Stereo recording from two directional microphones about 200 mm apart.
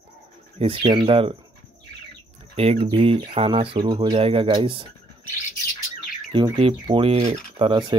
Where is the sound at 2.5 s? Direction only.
30° right (ahead or behind).